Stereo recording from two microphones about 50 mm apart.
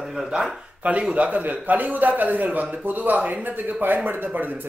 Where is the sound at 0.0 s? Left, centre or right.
Centre.